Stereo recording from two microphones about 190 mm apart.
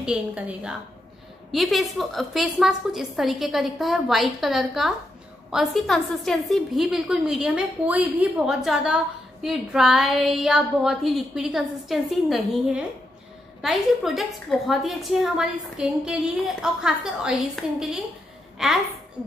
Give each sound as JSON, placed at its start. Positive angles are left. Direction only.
{"t": 0.0, "sound": "a woman's voice", "side_deg": -5}